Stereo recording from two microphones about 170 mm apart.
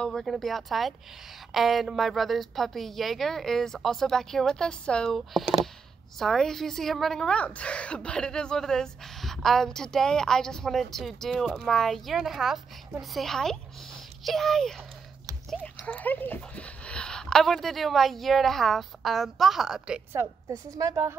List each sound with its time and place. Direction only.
0.0 s a woman's voice: centre (ahead or behind)
20.1 s a woman's voice: 15° right (ahead or behind)